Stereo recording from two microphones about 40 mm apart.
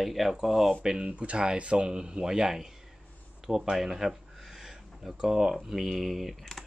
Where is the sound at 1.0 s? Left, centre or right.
Right.